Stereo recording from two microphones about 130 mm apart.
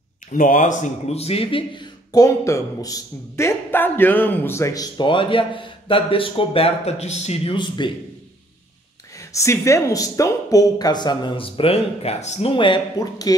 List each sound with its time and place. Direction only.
0.3 s speech: 85° left; by 2.2 s 35° left (ahead or behind)
2.2 s a man's voice: 25° left (ahead or behind)
4.9 s speech: 40° left (ahead or behind); by 7.5 s 55° left (ahead or behind)
7.5 s speech: 35° left (ahead or behind)
9.3 s speech: 25° left (ahead or behind); by 12.8 s 40° left (ahead or behind)